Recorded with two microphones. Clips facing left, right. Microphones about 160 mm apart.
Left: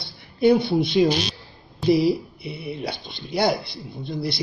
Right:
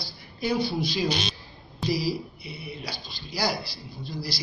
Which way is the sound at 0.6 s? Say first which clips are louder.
Left 8 dB; 60° left (ahead or behind).